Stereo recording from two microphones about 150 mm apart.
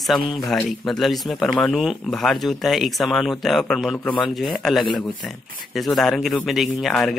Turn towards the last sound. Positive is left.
turn(degrees=0)  # may be behind; listen again after turning